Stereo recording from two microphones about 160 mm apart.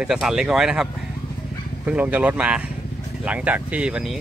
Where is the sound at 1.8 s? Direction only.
10° right (ahead or behind).